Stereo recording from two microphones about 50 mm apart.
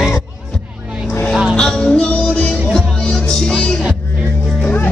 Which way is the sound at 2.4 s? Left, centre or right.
Left.